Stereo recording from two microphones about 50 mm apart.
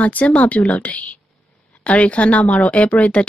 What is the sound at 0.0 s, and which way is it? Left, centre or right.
A woman's voice, left.